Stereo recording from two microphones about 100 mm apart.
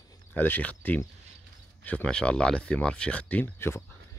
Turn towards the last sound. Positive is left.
turn(degrees=20)  # may be behind; listen again after turning